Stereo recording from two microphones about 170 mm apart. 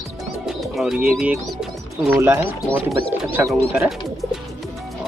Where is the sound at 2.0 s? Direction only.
10° right (ahead or behind).